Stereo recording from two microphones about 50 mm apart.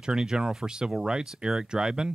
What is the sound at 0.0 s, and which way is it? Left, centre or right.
Speech, centre.